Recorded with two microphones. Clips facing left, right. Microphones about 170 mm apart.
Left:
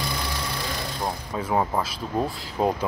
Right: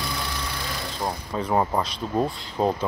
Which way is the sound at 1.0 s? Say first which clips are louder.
Right 2 dB; 5° left (ahead or behind).